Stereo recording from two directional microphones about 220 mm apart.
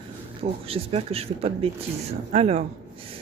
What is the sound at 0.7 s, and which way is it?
Speech, 25° right (ahead or behind).